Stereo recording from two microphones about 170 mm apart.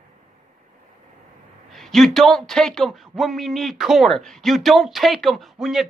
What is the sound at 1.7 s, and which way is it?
A man's voice, centre (ahead or behind).